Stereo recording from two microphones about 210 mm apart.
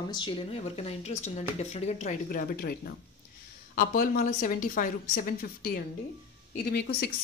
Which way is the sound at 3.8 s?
40° left (ahead or behind).